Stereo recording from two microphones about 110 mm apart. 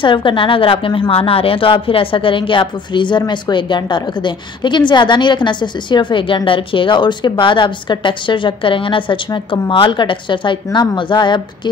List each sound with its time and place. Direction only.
0.0 s a woman's voice: 50° left (ahead or behind)